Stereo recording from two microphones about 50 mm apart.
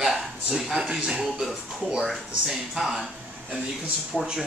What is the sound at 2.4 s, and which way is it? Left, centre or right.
Speech, centre.